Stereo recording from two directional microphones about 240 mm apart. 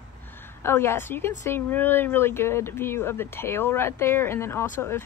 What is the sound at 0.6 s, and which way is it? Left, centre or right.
A woman's voice, centre.